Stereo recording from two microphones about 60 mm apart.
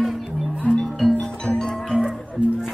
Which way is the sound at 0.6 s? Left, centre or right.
Centre.